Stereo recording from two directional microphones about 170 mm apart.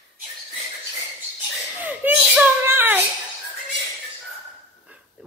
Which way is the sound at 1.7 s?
10° right (ahead or behind).